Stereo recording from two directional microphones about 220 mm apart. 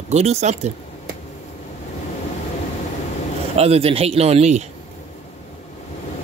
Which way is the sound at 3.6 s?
25° right (ahead or behind).